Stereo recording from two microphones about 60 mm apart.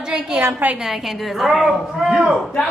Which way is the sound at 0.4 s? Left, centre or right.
Right.